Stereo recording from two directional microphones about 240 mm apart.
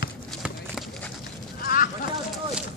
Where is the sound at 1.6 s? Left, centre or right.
Left.